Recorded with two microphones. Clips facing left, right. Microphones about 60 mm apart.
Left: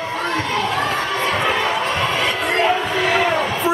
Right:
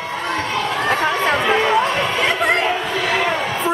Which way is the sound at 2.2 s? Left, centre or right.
Right.